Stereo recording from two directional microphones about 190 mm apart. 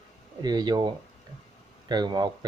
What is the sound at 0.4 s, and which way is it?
Speech, 20° right (ahead or behind).